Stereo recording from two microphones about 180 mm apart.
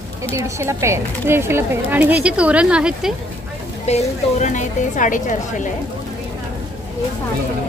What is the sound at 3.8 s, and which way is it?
Speech, 40° left (ahead or behind).